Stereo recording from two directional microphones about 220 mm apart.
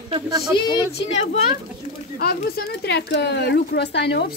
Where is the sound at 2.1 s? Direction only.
45° left (ahead or behind).